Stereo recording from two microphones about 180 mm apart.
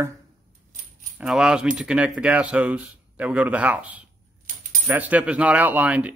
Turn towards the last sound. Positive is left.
turn(degrees=-10)  # may be behind; listen again after turning